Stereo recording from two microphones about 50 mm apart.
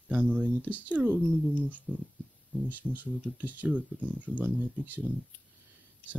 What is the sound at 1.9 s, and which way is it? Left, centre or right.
Speech, centre.